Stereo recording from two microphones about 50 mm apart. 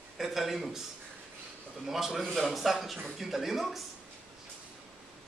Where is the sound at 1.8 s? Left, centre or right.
Centre.